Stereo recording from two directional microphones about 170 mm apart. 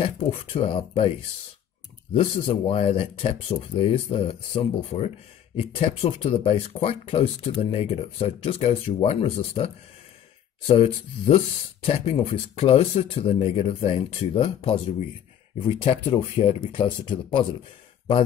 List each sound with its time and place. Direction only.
0.0 s speech: 35° left (ahead or behind)
2.1 s speech: 30° left (ahead or behind)
10.7 s speech: 40° left (ahead or behind)
15.8 s speech: 35° left (ahead or behind)